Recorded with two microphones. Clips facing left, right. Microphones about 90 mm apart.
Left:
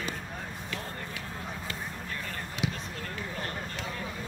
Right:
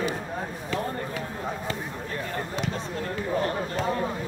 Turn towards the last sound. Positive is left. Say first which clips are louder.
# right 10 dB
turn(degrees=-40)  # may be behind; listen again after turning